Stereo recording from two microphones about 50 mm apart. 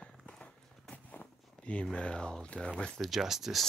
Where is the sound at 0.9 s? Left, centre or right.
Left.